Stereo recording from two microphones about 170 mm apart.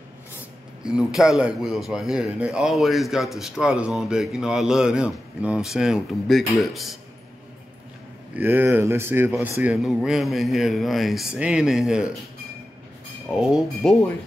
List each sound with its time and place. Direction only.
0.8 s speech: 5° right (ahead or behind)
8.4 s speech: 10° right (ahead or behind)
13.3 s speech: centre (ahead or behind)